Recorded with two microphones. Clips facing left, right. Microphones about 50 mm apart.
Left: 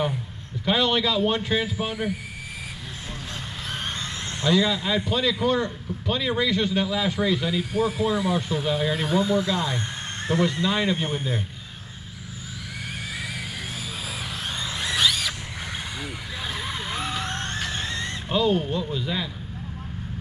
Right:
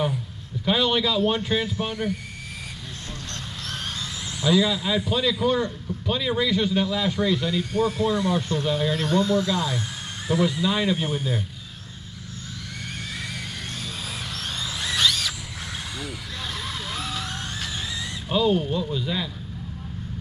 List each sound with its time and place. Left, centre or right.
0.7 s a man's voice: centre
4.4 s a man's voice: centre
14.6 s a sound: centre
16.5 s vehicle: centre
17.9 s speech: centre